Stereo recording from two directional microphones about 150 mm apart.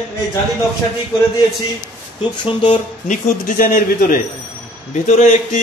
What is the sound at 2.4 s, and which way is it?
A man's voice, 55° left (ahead or behind).